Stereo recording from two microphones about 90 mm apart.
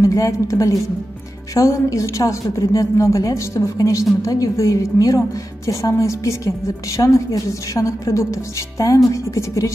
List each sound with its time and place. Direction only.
0.0 s a woman's voice: 40° left (ahead or behind)